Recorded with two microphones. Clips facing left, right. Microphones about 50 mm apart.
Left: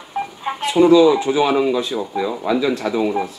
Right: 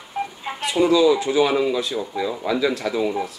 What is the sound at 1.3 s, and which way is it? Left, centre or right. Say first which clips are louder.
Speech: left 2 dB; left.